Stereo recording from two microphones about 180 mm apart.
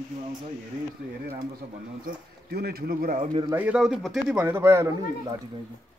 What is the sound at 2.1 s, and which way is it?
Speech, 60° right (ahead or behind).